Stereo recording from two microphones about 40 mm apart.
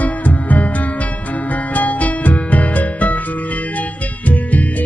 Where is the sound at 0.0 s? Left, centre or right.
Left.